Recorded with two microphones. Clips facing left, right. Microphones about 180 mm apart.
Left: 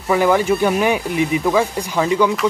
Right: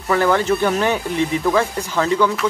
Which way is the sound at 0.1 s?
10° left (ahead or behind).